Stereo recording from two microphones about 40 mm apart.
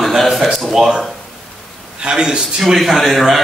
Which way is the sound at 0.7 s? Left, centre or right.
Centre.